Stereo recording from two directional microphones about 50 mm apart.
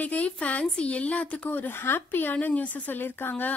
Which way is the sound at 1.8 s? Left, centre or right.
Left.